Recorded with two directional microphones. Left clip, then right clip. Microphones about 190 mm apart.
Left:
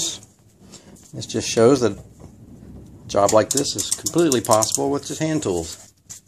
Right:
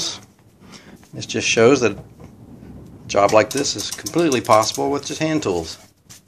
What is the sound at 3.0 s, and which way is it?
Speech, 25° left (ahead or behind).